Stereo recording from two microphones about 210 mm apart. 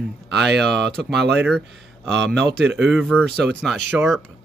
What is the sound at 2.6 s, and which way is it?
Speech, 55° right (ahead or behind).